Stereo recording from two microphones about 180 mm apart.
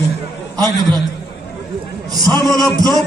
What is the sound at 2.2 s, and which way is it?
Speech, 20° right (ahead or behind).